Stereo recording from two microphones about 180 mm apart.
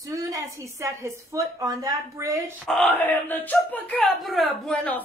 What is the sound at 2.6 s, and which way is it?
Speech, 5° left (ahead or behind).